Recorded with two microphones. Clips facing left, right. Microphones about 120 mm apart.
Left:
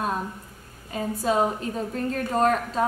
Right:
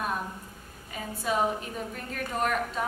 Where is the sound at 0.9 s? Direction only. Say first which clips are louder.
Left 6 dB; 35° left (ahead or behind).